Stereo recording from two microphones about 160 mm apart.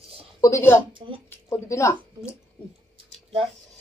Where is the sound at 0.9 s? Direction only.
30° right (ahead or behind).